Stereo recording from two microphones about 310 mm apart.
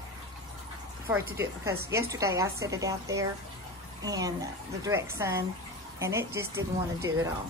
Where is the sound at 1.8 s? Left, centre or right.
Centre.